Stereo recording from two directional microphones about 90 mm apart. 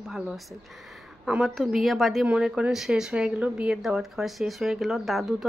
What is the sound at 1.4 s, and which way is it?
Speech, centre (ahead or behind).